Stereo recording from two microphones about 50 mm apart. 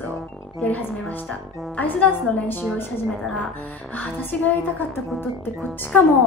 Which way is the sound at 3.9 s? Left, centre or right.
Left.